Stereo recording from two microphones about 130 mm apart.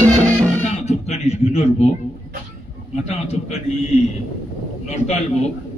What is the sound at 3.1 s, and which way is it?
Speech, 55° left (ahead or behind).